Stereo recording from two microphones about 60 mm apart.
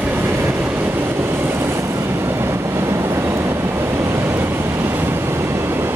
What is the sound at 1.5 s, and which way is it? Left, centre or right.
Vehicle, right.